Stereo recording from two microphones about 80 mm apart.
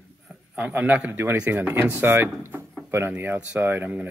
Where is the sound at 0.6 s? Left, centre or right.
Centre.